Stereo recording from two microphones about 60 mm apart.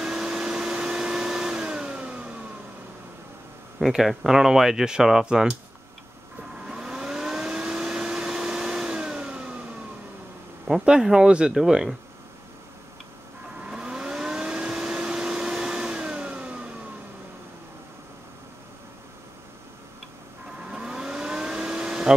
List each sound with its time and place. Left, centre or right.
0.0 s vacuum cleaner: centre
3.8 s speech: centre
6.6 s vehicle: centre
10.7 s speech: centre
13.7 s a sound: centre
20.7 s vehicle: centre